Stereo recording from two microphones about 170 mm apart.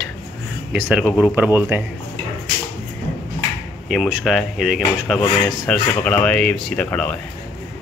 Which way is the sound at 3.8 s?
5° right (ahead or behind).